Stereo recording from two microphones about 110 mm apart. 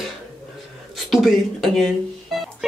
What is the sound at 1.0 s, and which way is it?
Speech, centre (ahead or behind).